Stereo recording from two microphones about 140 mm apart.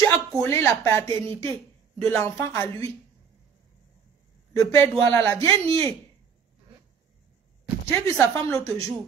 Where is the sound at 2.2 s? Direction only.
20° left (ahead or behind).